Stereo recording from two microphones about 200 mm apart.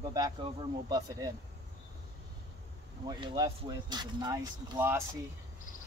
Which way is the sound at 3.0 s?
20° right (ahead or behind).